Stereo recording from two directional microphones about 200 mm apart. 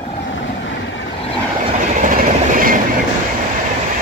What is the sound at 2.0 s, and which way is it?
Train, 45° right (ahead or behind).